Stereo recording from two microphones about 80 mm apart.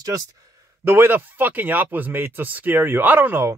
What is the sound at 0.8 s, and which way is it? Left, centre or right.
Speech, right.